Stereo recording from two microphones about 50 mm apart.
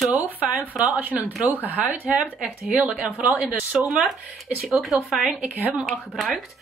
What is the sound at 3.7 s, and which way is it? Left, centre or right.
Speech, centre.